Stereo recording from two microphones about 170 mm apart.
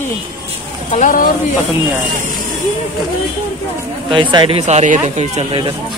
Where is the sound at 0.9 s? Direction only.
50° left (ahead or behind).